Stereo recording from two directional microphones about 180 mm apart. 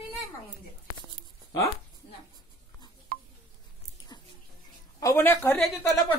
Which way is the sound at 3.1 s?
50° right (ahead or behind).